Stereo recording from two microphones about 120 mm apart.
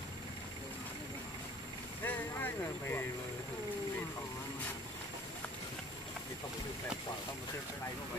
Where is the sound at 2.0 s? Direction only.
15° left (ahead or behind).